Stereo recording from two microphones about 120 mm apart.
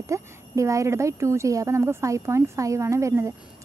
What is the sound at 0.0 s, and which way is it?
Speech, 25° right (ahead or behind).